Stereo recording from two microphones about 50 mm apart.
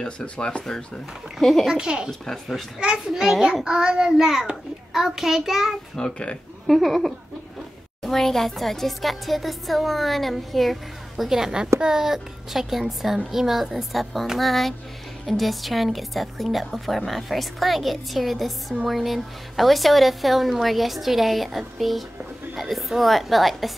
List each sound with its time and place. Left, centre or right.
0.0 s speech: centre
1.4 s a woman's voice: centre
1.7 s a child's voice: centre
2.0 s a woman's voice: centre
2.8 s a child's voice: centre
5.9 s speech: centre
6.7 s a woman's voice: centre
11.2 s a child's voice: centre